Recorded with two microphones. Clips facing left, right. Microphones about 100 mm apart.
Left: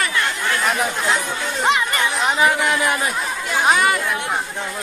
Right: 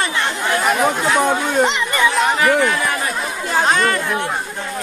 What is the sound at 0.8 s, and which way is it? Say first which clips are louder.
Speech: right 6 dB; 60° right (ahead or behind).